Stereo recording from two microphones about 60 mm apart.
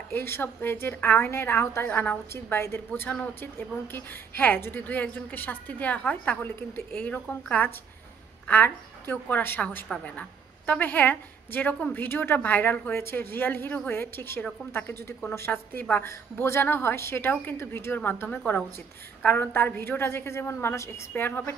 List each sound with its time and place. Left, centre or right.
0.1 s a woman's voice: left
2.3 s a woman's voice: left
9.9 s a woman's voice: centre
10.7 s a woman's voice: left
12.9 s a woman's voice: left
21.1 s a woman's voice: left